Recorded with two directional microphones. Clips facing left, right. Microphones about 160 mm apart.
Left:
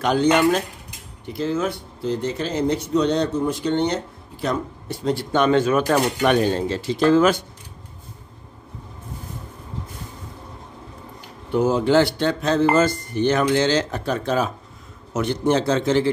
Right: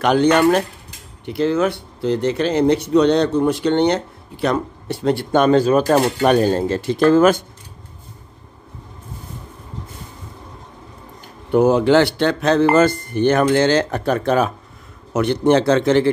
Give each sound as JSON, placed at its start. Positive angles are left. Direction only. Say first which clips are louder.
{"t": 0.0, "sound": "speech", "louder": "right 3 dB", "side_deg": -70}
{"t": 5.3, "sound": "speech", "louder": "right 4 dB", "side_deg": -40}
{"t": 11.5, "sound": "speech", "louder": "right 4 dB", "side_deg": -65}
{"t": 12.7, "sound": "speech", "louder": "right 4 dB", "side_deg": -55}